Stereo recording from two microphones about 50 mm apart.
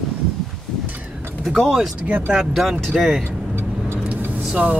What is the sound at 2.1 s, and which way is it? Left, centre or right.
Speech, right.